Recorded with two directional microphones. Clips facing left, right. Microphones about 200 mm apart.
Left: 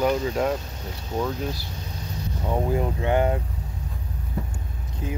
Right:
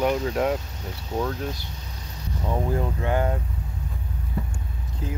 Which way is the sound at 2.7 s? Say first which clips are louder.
Left 3 dB; 15° left (ahead or behind).